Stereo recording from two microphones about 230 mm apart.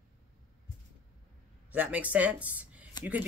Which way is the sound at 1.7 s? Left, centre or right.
Centre.